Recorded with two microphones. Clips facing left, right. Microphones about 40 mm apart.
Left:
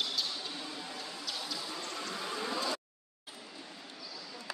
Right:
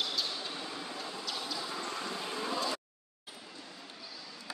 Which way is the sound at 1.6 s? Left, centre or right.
Right.